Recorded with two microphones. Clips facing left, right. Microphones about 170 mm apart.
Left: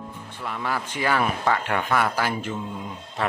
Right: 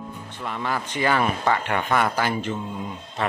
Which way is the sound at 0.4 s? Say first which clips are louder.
Right 1 dB; 5° left (ahead or behind).